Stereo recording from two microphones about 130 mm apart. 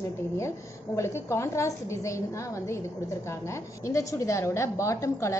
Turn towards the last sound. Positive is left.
turn(degrees=25)  # may be behind; listen again after turning